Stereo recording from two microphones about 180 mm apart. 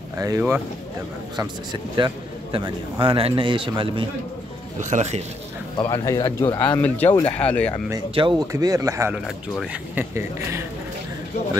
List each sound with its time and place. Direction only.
0.2 s a man's voice: 15° right (ahead or behind)
4.7 s speech: 40° right (ahead or behind)
5.8 s speech: 20° left (ahead or behind)
6.6 s speech: 10° left (ahead or behind)
8.1 s a man's voice: 30° right (ahead or behind)
8.5 s speech: 20° right (ahead or behind)
9.2 s speech: 5° right (ahead or behind)